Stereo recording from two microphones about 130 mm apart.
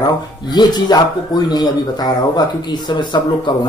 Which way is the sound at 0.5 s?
30° left (ahead or behind).